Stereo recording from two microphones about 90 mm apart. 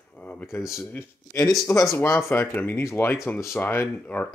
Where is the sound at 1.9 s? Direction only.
30° left (ahead or behind).